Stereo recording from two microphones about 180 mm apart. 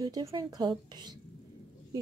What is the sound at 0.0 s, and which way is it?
A woman's voice, 20° right (ahead or behind).